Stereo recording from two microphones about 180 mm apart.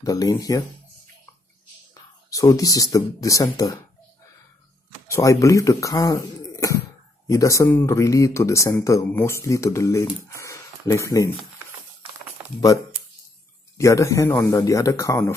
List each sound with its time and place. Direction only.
0.0 s speech: 20° left (ahead or behind)
2.2 s speech: 20° left (ahead or behind)
5.0 s speech: 15° left (ahead or behind)
12.5 s speech: 20° left (ahead or behind)